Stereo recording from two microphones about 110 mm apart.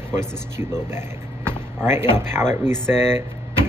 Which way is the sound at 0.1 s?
25° right (ahead or behind).